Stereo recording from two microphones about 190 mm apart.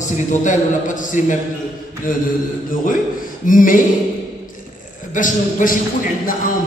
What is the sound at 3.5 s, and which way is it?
Speech, 45° left (ahead or behind).